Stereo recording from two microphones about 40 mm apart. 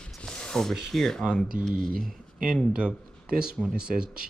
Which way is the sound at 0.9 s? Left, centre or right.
Centre.